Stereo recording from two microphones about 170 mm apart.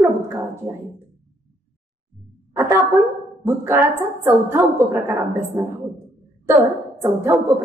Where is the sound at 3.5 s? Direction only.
15° right (ahead or behind).